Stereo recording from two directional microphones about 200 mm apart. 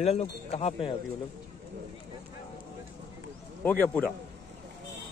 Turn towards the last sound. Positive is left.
turn(degrees=10)  # may be behind; listen again after turning